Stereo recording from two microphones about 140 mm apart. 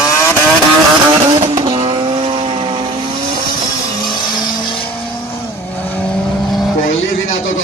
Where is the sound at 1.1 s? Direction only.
25° right (ahead or behind).